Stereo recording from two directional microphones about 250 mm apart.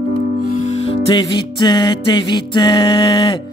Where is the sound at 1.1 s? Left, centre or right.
Centre.